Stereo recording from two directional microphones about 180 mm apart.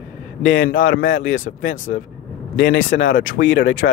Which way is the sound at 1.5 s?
60° left (ahead or behind).